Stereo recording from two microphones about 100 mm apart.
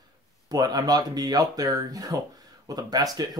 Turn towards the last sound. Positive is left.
turn(degrees=-40)  # may be behind; listen again after turning